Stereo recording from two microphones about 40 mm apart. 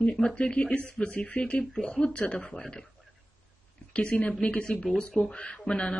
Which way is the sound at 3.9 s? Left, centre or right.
Left.